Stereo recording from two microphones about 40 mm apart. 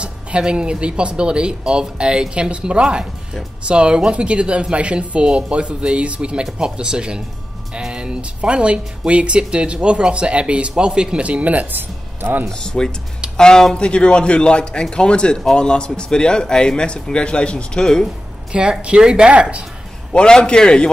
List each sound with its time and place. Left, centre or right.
0.4 s speech: right
11.2 s speech: right
11.7 s speech: right
12.4 s speech: centre
17.7 s speech: centre
18.5 s speech: right
20.1 s speech: centre